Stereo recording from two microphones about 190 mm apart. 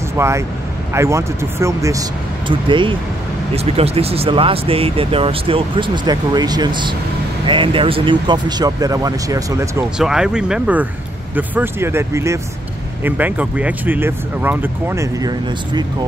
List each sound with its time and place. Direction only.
0.2 s speech: 15° right (ahead or behind)
9.9 s speech: 5° right (ahead or behind); by 15.8 s 20° right (ahead or behind)